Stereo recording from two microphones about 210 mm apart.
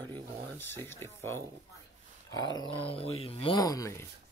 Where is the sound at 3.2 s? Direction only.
25° left (ahead or behind).